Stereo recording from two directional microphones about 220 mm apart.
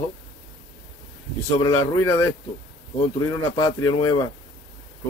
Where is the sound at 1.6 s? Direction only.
15° left (ahead or behind).